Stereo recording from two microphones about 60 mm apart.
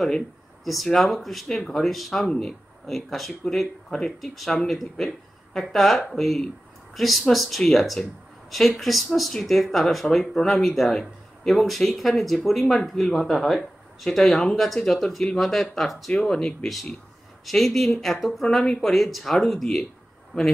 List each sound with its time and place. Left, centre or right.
0.8 s speech: centre
20.3 s speech: centre